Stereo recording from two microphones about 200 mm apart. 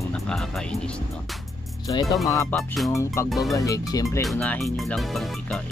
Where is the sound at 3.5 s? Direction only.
15° left (ahead or behind).